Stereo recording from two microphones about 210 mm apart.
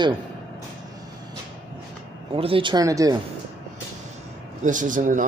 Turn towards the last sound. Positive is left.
turn(degrees=-40)  # may be behind; listen again after turning